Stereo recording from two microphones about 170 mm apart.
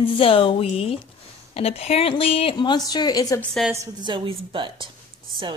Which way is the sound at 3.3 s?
Centre (ahead or behind).